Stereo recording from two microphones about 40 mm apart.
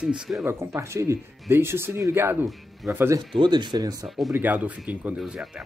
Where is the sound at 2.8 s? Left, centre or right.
Centre.